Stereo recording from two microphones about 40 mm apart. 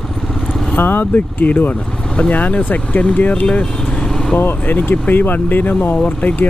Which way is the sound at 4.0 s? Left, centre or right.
Centre.